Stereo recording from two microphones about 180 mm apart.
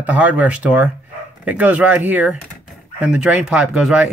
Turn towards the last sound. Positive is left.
turn(degrees=-5)  # may be behind; listen again after turning